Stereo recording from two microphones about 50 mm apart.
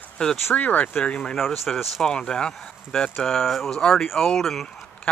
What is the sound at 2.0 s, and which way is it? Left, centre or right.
Speech, centre.